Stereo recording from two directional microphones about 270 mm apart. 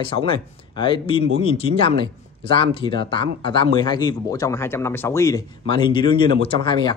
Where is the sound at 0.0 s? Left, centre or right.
Centre.